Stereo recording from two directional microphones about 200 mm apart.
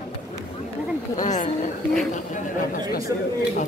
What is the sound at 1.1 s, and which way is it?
Chatter, 35° left (ahead or behind).